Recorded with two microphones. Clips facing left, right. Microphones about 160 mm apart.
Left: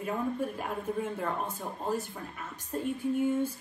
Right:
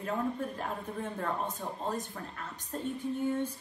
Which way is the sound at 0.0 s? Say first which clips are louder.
Left 1 dB; 10° left (ahead or behind).